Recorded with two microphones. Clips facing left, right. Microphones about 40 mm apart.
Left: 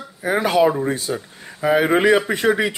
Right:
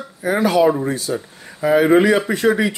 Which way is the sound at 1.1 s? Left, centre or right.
Centre.